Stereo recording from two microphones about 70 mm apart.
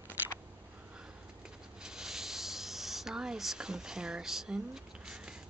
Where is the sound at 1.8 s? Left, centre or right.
Centre.